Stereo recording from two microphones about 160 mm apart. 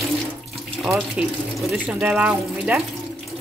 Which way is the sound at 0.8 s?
5° right (ahead or behind).